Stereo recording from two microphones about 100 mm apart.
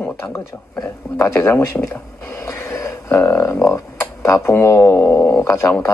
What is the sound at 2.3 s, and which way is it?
Train, 30° left (ahead or behind).